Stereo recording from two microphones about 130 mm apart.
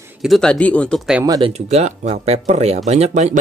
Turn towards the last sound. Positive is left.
turn(degrees=-65)  # may be behind; listen again after turning